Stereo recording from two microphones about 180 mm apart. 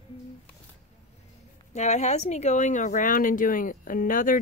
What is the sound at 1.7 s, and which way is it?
Speech, 40° left (ahead or behind).